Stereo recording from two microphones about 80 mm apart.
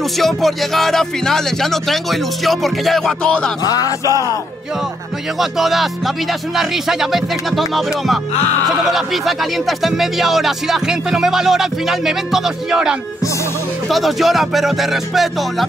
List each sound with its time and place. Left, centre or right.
0.2 s speech: centre
3.6 s music: left
5.4 s speech: centre